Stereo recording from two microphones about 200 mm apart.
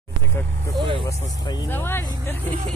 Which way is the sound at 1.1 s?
35° right (ahead or behind).